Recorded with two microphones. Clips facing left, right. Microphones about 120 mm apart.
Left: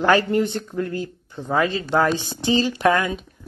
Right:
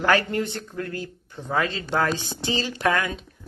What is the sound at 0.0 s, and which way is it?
Speech, 20° left (ahead or behind).